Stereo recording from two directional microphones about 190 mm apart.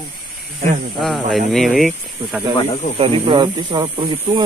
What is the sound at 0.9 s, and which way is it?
Speech, centre (ahead or behind).